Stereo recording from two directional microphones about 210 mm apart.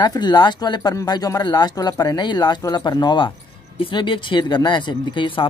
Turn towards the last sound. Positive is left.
turn(degrees=25)  # may be behind; listen again after turning